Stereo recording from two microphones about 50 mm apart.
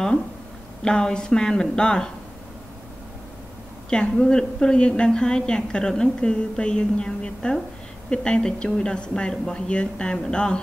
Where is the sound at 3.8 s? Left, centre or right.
Centre.